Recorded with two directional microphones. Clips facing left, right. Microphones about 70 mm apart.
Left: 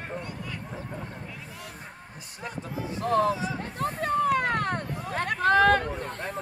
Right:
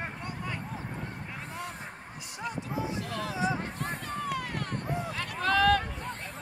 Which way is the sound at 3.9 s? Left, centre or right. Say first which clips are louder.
Left 13 dB; left.